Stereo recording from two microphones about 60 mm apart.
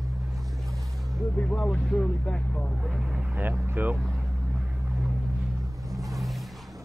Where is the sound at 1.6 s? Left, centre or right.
Centre.